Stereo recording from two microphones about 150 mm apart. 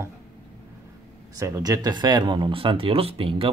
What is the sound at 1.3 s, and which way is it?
Speech, 25° right (ahead or behind).